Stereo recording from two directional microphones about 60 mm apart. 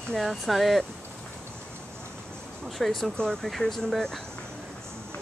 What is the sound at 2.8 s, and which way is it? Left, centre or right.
Speech, centre.